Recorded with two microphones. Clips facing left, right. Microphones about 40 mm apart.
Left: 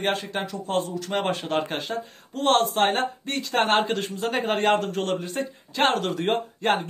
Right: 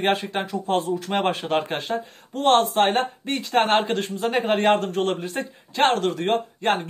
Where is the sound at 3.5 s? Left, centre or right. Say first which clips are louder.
Right 2 dB; centre.